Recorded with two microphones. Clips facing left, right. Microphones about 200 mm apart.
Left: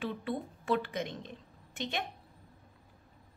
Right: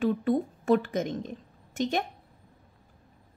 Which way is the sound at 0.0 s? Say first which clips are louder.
Right 10 dB; 45° right (ahead or behind).